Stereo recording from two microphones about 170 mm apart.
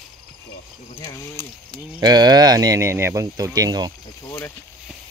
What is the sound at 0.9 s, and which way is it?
Speech, 25° left (ahead or behind).